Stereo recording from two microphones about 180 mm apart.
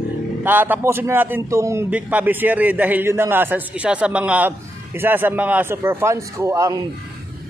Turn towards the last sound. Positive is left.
turn(degrees=-15)  # may be behind; listen again after turning